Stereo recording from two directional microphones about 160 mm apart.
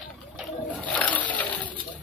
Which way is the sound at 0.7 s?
10° left (ahead or behind).